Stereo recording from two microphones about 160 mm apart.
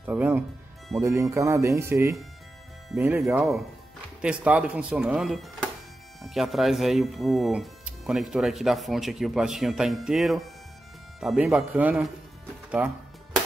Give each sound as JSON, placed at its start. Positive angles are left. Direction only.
{"t": 0.0, "sound": "speech", "side_deg": -10}
{"t": 3.2, "sound": "speech", "side_deg": 0}